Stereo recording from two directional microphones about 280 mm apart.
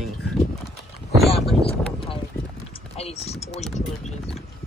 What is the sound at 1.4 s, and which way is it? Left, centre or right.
Boat, centre.